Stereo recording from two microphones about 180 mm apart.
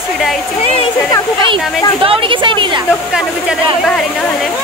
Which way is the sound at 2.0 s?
30° right (ahead or behind).